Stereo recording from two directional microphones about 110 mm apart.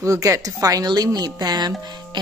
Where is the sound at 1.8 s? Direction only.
40° right (ahead or behind).